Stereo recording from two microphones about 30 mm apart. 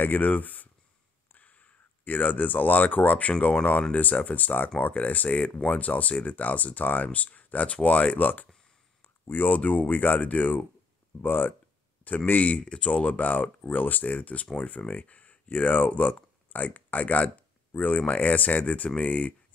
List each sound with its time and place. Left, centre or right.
0.1 s speech: left
7.1 s speech: left
9.3 s speech: left
9.7 s speech: left
11.2 s speech: left
12.3 s speech: left
12.5 s speech: left
12.9 s speech: left
13.7 s speech: left
18.9 s speech: left